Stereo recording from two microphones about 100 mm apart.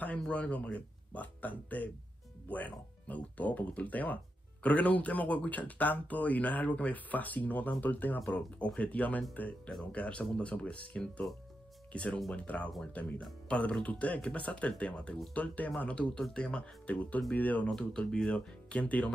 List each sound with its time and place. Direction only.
0.0 s speech: 15° left (ahead or behind)